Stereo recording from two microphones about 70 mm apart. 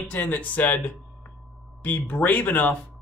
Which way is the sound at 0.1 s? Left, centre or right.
Left.